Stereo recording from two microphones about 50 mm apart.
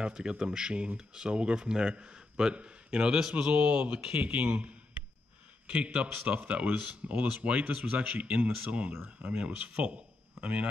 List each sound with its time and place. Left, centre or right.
0.0 s speech: centre
3.5 s speech: right